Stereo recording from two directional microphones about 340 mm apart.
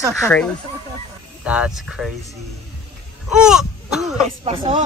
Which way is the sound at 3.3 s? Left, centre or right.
Centre.